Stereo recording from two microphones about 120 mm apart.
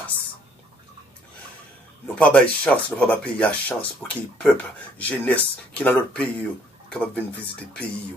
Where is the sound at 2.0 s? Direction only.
10° left (ahead or behind).